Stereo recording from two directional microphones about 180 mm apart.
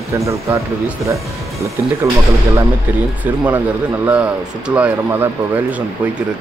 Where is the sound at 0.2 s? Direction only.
15° right (ahead or behind).